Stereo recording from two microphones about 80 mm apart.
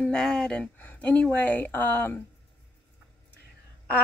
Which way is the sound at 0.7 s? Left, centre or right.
Left.